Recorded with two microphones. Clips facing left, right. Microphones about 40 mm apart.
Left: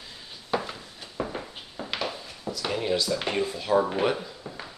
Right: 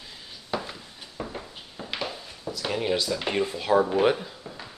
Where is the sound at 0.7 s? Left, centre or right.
Centre.